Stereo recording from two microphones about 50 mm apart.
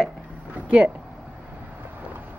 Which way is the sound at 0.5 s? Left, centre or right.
Right.